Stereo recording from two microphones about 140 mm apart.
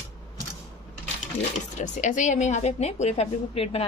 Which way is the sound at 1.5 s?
60° left (ahead or behind).